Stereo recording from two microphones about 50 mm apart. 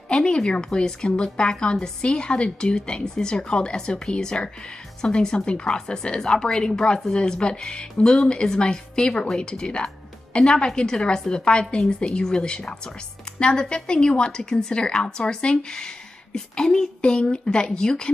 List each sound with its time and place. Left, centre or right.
0.1 s a woman's voice: centre